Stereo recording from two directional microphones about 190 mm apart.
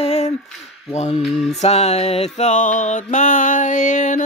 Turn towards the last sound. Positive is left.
turn(degrees=40)  # may be behind; listen again after turning